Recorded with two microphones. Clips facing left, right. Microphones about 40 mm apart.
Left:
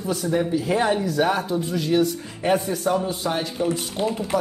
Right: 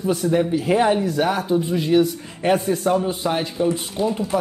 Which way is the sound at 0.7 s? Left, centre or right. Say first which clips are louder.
Right 3 dB; centre.